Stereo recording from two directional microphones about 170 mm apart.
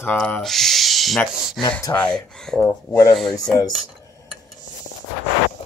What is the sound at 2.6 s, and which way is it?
Speech, 20° left (ahead or behind).